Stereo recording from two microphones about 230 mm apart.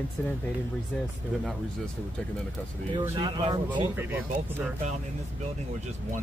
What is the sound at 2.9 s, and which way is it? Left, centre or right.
Speech, centre.